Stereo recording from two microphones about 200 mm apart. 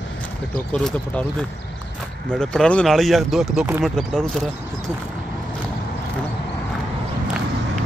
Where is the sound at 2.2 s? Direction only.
5° left (ahead or behind).